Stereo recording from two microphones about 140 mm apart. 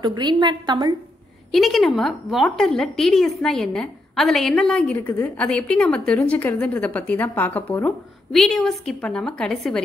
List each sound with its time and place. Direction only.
0.0 s a woman's voice: 30° right (ahead or behind)
1.5 s a woman's voice: centre (ahead or behind)